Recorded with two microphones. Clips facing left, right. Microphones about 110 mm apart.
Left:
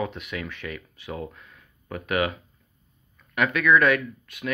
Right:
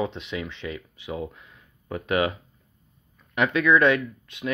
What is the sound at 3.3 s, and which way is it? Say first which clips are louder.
Speech: even; 25° right (ahead or behind).